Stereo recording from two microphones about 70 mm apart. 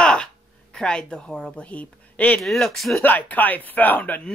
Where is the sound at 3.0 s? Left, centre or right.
Left.